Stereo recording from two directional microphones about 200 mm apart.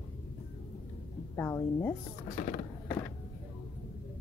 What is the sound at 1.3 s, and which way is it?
Speech, 15° left (ahead or behind).